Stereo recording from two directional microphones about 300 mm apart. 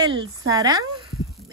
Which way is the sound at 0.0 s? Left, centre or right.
Centre.